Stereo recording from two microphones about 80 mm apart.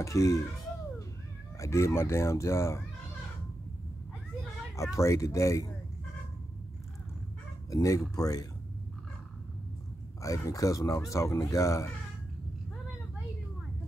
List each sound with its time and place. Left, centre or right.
0.0 s speech: left
1.6 s speech: left
4.9 s speech: left
7.7 s speech: left
10.2 s speech: left